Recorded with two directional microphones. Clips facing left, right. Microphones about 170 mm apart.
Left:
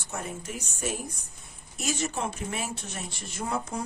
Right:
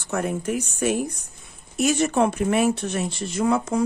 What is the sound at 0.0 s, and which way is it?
Speech, 70° right (ahead or behind).